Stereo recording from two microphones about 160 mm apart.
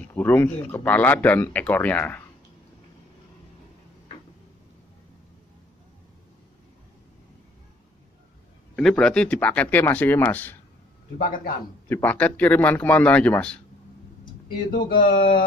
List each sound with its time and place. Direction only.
0.1 s speech: 15° left (ahead or behind)
8.7 s speech: 5° left (ahead or behind)
11.1 s a man's voice: 55° left (ahead or behind)
11.9 s speech: 10° left (ahead or behind)
14.2 s speech: 60° left (ahead or behind)